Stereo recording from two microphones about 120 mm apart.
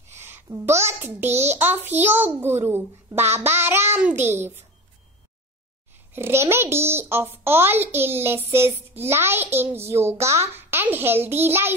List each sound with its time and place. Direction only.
0.1 s a child's voice: 20° right (ahead or behind)
6.1 s a child's voice: 20° right (ahead or behind)